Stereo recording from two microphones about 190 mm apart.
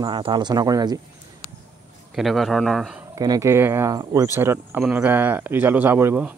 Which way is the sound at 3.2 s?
15° right (ahead or behind).